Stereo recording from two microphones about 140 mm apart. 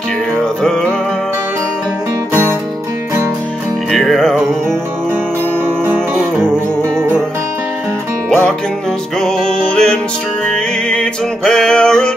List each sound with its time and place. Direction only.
0.6 s music: 5° left (ahead or behind)
3.9 s music: centre (ahead or behind)
6.4 s music: 15° right (ahead or behind)
8.3 s music: 5° left (ahead or behind)